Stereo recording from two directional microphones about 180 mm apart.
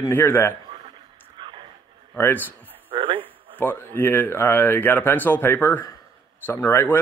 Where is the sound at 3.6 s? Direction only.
10° left (ahead or behind).